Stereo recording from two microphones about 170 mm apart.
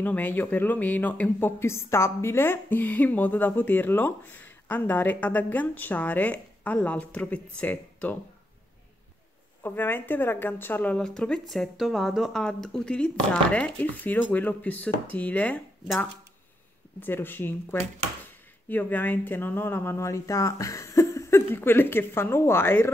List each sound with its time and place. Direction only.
0.0 s speech: 10° left (ahead or behind)
9.6 s speech: 10° left (ahead or behind)
17.0 s speech: 10° left (ahead or behind)